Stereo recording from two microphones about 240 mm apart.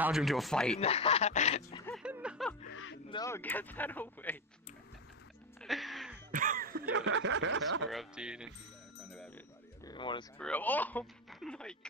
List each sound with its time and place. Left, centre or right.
0.0 s speech: centre
0.7 s speech: left
2.0 s a sound: centre
2.7 s a sound: left
3.1 s speech: centre
5.6 s music: centre
6.3 s speech: right
7.9 s speech: centre
9.8 s a sound: centre
10.4 s speech: centre